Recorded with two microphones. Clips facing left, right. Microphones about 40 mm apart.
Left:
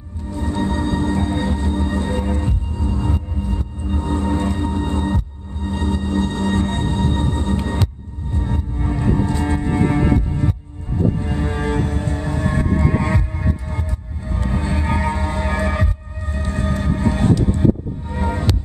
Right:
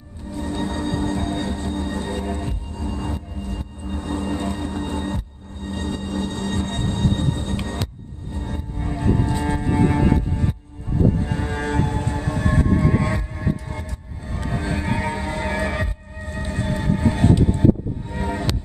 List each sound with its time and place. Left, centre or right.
0.3 s music: centre
17.3 s music: centre
18.1 s music: centre